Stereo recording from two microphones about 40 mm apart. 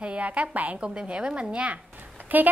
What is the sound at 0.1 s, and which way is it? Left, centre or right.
A woman's voice, right.